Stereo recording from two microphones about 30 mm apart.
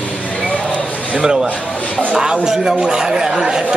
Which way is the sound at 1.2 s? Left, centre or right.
Right.